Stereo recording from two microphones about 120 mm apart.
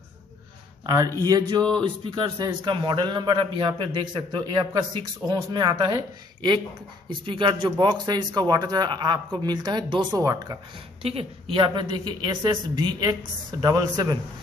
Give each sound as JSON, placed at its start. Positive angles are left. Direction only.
{"t": 0.8, "sound": "a man's voice", "side_deg": -30}
{"t": 7.1, "sound": "a woman's voice", "side_deg": -45}
{"t": 11.0, "sound": "a woman's voice", "side_deg": -55}